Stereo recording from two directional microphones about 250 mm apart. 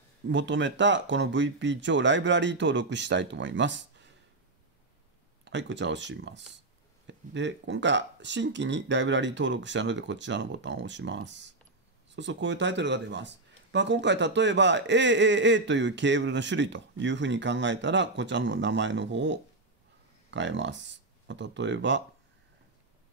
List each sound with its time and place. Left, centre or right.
0.3 s speech: right
5.4 s speech: right